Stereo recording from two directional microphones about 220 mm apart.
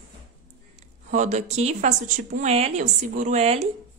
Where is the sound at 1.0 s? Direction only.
35° right (ahead or behind).